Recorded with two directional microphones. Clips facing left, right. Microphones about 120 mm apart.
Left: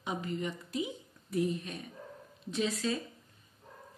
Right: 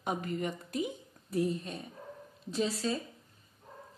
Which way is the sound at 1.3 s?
30° right (ahead or behind).